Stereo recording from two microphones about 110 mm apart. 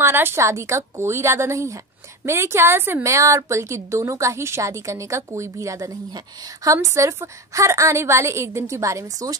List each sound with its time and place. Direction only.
0.0 s a woman's voice: 20° right (ahead or behind)